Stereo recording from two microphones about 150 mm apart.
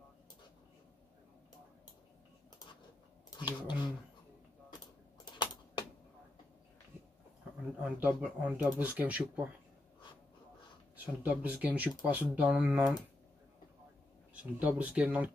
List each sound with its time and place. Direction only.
3.3 s a sound: 30° left (ahead or behind)
5.2 s typing: 30° left (ahead or behind)
7.8 s speech: 10° right (ahead or behind)
11.2 s speech: 10° right (ahead or behind)
14.3 s speech: 10° right (ahead or behind)